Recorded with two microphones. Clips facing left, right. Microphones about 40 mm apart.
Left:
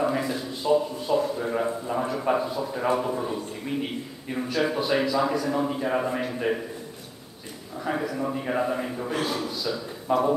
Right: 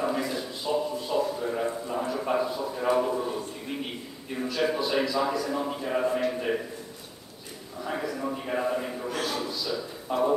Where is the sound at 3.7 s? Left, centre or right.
Centre.